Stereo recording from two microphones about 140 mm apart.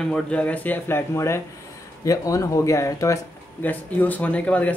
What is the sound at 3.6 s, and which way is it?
Speech, 10° left (ahead or behind).